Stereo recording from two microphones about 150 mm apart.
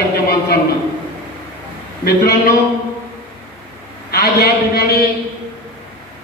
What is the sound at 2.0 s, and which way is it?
Speech, 85° left.